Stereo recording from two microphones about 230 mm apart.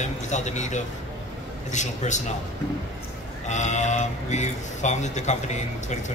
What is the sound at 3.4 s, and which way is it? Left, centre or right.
Speech, left.